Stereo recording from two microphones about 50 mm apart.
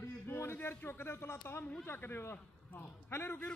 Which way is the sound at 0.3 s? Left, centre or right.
Left.